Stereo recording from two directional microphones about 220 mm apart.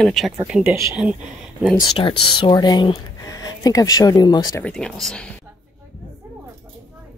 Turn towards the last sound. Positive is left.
turn(degrees=5)  # may be behind; listen again after turning